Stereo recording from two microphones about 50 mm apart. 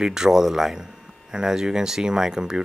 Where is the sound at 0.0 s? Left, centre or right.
Centre.